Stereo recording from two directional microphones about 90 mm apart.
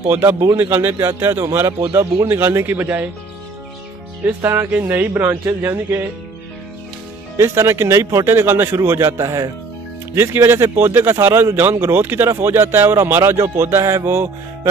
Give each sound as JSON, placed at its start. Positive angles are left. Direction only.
{"t": 0.1, "sound": "speech", "side_deg": -20}
{"t": 4.4, "sound": "speech", "side_deg": -25}
{"t": 7.3, "sound": "a man's voice", "side_deg": -30}